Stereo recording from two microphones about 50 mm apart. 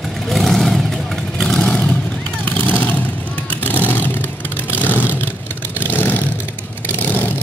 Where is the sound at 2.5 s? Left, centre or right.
Left.